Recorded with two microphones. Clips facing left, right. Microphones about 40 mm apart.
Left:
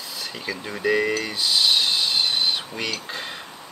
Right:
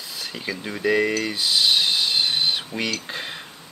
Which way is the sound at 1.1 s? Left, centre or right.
Centre.